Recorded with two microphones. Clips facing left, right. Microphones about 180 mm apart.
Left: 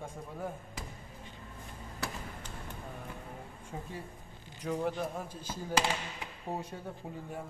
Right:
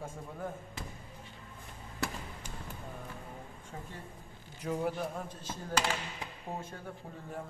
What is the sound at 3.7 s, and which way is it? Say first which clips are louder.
Speech: left 3 dB; 20° left (ahead or behind).